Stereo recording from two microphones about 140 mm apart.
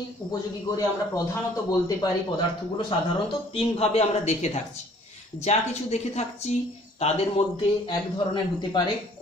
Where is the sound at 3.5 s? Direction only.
45° left (ahead or behind).